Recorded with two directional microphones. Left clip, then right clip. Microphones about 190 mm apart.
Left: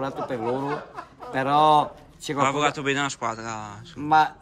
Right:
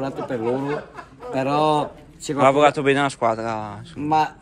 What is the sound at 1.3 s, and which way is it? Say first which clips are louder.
A man's voice: left 1 dB; 10° left (ahead or behind).